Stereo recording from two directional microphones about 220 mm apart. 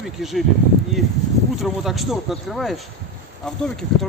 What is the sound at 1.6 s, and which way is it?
Speech, centre (ahead or behind).